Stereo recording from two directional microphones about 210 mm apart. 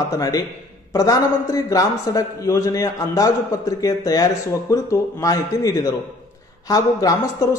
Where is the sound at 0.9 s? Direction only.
15° left (ahead or behind).